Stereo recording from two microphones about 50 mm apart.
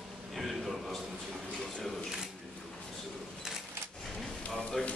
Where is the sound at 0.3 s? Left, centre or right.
Centre.